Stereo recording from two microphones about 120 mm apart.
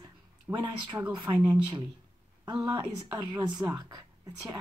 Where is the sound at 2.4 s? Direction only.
30° right (ahead or behind).